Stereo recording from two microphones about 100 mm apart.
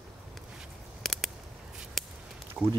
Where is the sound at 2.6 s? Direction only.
Centre (ahead or behind).